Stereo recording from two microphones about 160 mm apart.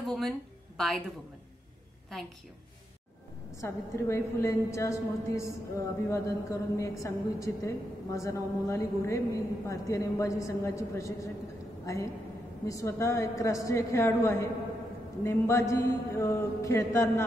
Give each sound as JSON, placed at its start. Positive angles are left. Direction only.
{"t": 0.0, "sound": "a woman's voice", "side_deg": 0}
{"t": 3.6, "sound": "a woman's voice", "side_deg": 15}